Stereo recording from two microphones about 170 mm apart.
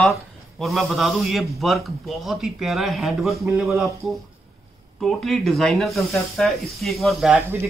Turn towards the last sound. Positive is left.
turn(degrees=-5)  # may be behind; listen again after turning